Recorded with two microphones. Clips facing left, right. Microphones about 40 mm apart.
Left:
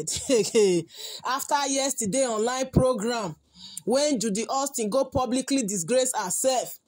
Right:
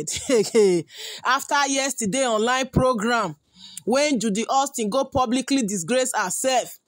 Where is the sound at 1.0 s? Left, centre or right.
Right.